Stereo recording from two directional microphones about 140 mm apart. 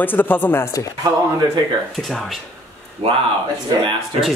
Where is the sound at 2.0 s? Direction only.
Centre (ahead or behind).